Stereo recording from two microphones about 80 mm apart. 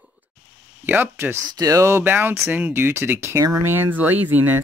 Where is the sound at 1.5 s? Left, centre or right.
Right.